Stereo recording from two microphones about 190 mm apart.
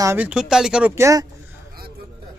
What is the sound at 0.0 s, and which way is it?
Speech, 10° right (ahead or behind).